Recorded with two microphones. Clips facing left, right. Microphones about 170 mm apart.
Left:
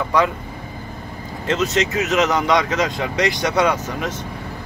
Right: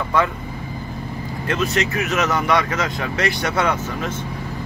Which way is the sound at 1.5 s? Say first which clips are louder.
Left 2 dB; 20° left (ahead or behind).